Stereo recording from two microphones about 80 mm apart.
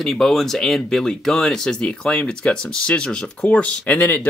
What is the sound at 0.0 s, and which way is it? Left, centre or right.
Speech, centre.